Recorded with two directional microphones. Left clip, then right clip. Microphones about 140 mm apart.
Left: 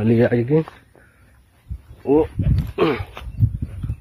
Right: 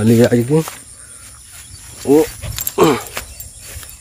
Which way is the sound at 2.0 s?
25° right (ahead or behind).